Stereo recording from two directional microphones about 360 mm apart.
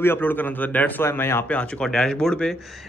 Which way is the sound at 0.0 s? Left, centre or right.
Centre.